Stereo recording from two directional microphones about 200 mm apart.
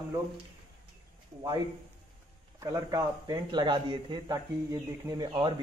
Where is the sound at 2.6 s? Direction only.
15° right (ahead or behind).